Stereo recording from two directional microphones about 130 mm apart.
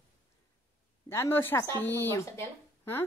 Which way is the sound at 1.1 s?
20° left (ahead or behind).